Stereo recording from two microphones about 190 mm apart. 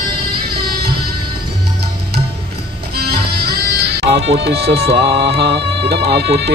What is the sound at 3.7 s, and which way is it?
Music, 60° right (ahead or behind).